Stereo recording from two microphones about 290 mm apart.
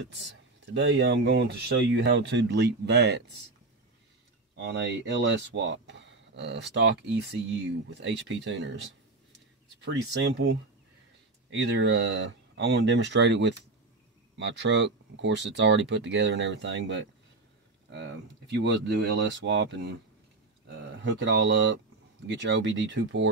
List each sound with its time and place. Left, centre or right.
0.7 s speech: right
4.6 s speech: right
9.8 s speech: right
21.0 s speech: right